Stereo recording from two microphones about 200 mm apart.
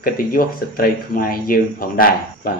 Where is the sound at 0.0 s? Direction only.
45° left (ahead or behind).